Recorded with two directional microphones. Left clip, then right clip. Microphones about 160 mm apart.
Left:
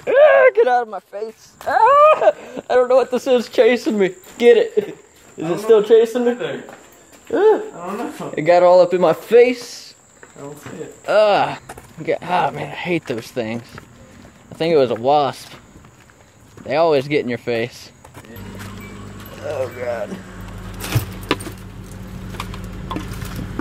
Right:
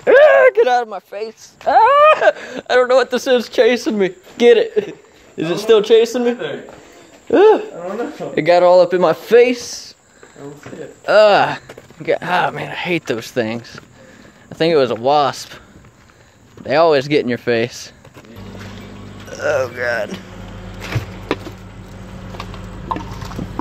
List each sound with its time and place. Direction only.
0.0 s speech: 50° right (ahead or behind)
5.4 s a man's voice: 50° right (ahead or behind)
8.4 s speech: 45° right (ahead or behind)
11.1 s speech: 25° right (ahead or behind)
16.6 s speech: 30° right (ahead or behind)
19.4 s a man's voice: 55° right (ahead or behind)